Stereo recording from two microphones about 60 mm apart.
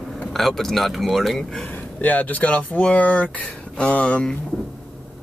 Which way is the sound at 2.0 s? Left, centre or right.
Left.